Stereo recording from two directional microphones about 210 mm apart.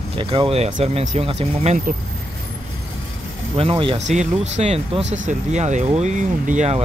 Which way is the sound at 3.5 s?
25° right (ahead or behind).